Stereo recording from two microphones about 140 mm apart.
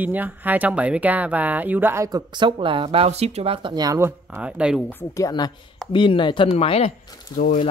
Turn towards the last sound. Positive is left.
turn(degrees=30)  # may be behind; listen again after turning